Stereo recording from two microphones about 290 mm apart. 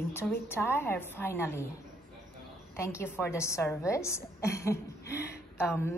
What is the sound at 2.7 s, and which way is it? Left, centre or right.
A woman's voice, centre.